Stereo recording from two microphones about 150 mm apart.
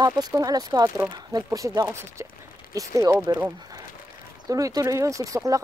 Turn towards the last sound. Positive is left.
turn(degrees=-20)  # may be behind; listen again after turning